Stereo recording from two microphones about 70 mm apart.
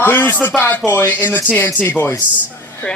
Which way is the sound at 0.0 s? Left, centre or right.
Left.